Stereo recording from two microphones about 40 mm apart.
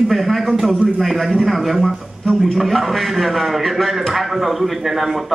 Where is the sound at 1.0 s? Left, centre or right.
Centre.